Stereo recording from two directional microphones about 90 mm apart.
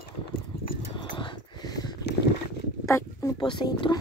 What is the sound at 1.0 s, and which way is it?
Dog, 60° left (ahead or behind).